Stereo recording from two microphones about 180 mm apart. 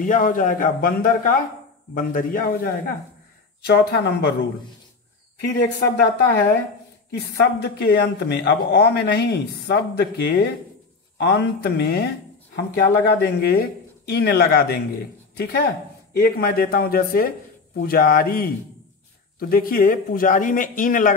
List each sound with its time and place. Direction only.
0.0 s a man's voice: 45° left (ahead or behind)
3.6 s speech: 65° left (ahead or behind)
5.6 s speech: 65° left (ahead or behind)
19.5 s a man's voice: 55° left (ahead or behind)